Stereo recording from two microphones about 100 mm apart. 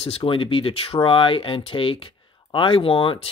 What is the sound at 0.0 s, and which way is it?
Speech, 65° left (ahead or behind).